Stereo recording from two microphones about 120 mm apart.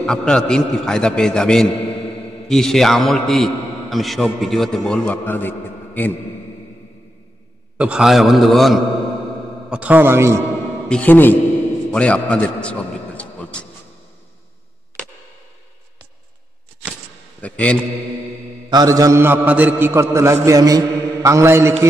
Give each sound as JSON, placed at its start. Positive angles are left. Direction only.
{"t": 0.0, "sound": "a man's voice", "side_deg": 5}
{"t": 7.7, "sound": "a man's voice", "side_deg": -10}
{"t": 9.7, "sound": "a man's voice", "side_deg": -10}
{"t": 10.9, "sound": "a man's voice", "side_deg": 10}
{"t": 11.9, "sound": "a sound", "side_deg": 10}
{"t": 17.4, "sound": "a man's voice", "side_deg": 10}
{"t": 18.7, "sound": "mantra", "side_deg": -30}